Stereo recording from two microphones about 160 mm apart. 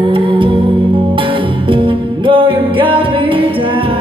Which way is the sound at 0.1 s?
35° right (ahead or behind).